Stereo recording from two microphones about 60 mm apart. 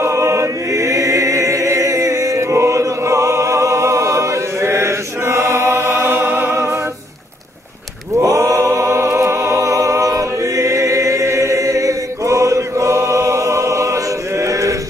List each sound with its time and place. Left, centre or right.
0.0 s chant: right
6.5 s music: right
8.1 s choir: right